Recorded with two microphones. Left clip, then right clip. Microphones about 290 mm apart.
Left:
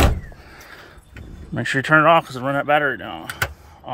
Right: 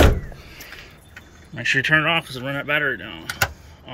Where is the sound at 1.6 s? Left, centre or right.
Centre.